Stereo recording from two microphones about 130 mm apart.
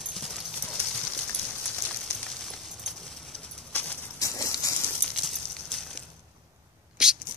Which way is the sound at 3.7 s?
10° left (ahead or behind).